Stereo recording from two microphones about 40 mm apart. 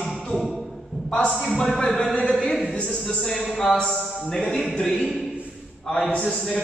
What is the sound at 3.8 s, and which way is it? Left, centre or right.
Speech, centre.